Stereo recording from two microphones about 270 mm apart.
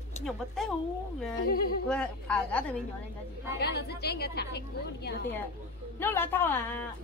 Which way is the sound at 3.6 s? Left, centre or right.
Left.